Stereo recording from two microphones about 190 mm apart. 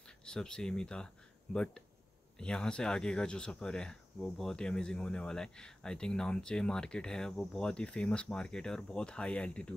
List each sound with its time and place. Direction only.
0.2 s speech: 5° left (ahead or behind)
2.3 s speech: 5° left (ahead or behind)